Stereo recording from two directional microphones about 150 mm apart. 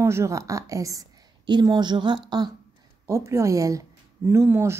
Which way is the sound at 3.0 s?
20° right (ahead or behind).